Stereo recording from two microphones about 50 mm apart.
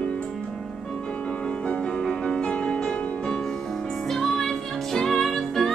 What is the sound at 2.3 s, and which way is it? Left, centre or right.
Music, centre.